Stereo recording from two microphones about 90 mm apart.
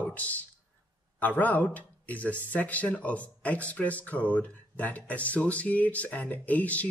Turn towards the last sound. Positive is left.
turn(degrees=15)  # may be behind; listen again after turning